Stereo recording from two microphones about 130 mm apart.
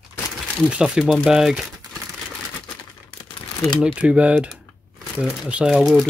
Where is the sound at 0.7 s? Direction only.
5° right (ahead or behind).